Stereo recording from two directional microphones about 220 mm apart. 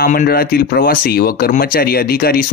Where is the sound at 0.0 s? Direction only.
40° left (ahead or behind).